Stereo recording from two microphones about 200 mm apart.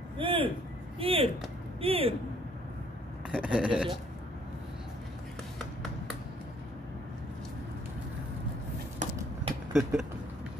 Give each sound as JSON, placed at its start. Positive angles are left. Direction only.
{"t": 0.2, "sound": "a sound", "side_deg": -25}
{"t": 0.9, "sound": "speech", "side_deg": -30}
{"t": 3.3, "sound": "a man's voice", "side_deg": -5}
{"t": 9.0, "sound": "clip-clop", "side_deg": -35}